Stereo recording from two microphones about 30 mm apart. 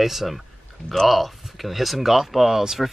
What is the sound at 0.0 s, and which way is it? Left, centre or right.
Speech, centre.